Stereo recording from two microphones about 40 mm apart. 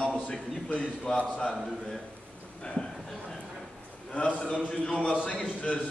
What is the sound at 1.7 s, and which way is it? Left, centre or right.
Speech, centre.